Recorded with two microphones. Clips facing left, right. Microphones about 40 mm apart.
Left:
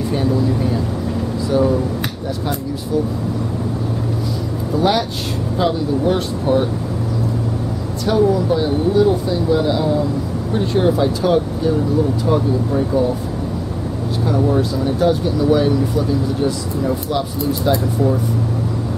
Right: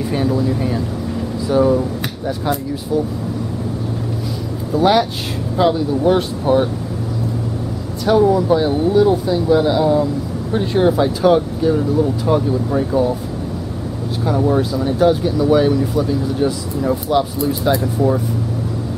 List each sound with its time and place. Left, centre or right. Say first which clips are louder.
0.1 s speech: even; centre
4.7 s speech: right 3 dB; centre
8.0 s speech: right 2 dB; centre
14.2 s speech: right 1 dB; centre